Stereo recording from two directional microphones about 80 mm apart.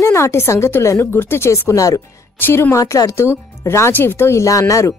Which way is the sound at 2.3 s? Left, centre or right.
Left.